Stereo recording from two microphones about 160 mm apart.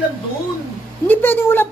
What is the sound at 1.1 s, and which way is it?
Speech, 15° left (ahead or behind).